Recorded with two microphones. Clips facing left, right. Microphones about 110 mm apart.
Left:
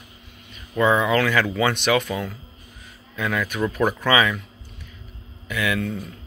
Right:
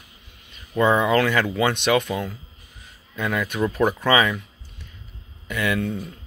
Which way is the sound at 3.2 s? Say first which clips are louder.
Even; 5° right (ahead or behind).